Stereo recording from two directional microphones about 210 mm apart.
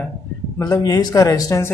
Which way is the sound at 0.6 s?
15° left (ahead or behind).